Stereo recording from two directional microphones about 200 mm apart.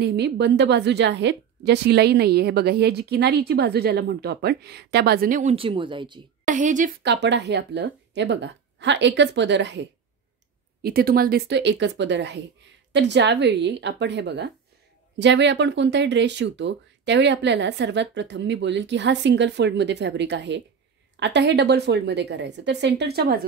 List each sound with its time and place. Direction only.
0.0 s a woman's voice: 55° right (ahead or behind); by 6.2 s 25° right (ahead or behind)
6.4 s a woman's voice: 40° right (ahead or behind)
7.0 s a woman's voice: 60° right (ahead or behind)
10.8 s a woman's voice: 50° right (ahead or behind)